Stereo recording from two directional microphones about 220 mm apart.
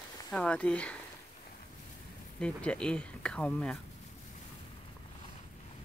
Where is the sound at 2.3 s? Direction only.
5° left (ahead or behind).